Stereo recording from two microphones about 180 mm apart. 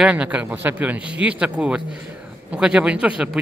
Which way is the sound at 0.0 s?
5° right (ahead or behind).